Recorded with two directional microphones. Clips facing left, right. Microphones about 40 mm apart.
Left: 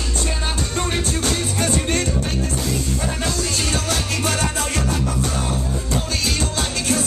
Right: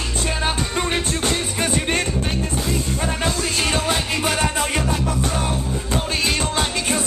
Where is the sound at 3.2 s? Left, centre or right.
Right.